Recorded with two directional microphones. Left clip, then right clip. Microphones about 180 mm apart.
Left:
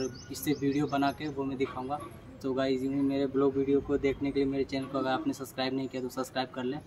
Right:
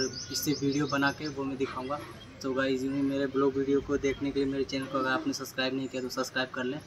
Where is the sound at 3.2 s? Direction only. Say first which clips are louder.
Even; 20° left (ahead or behind).